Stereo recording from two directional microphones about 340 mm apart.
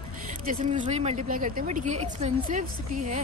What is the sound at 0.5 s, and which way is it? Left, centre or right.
Speech, right.